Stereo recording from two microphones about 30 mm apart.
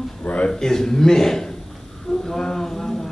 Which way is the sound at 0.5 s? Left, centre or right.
Centre.